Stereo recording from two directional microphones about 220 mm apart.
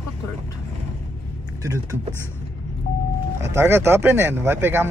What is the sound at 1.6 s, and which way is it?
Speech, 15° right (ahead or behind).